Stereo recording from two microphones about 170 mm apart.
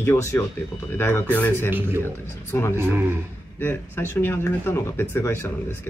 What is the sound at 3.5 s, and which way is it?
Speech, 10° left (ahead or behind).